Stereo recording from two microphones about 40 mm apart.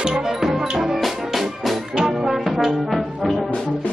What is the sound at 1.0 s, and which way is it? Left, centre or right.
Music, centre.